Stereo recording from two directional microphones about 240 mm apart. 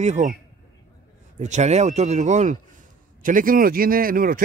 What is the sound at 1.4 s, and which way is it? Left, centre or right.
A man's voice, right.